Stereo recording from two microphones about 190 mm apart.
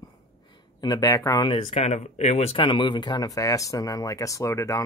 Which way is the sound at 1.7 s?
35° left (ahead or behind).